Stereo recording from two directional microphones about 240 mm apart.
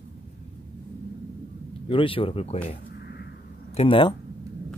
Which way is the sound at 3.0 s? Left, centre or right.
Left.